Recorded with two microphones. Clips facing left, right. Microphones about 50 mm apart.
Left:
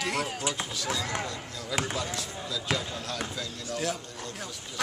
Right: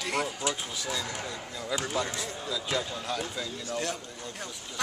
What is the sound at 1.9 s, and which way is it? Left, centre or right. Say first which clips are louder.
Speech: right 2 dB; centre.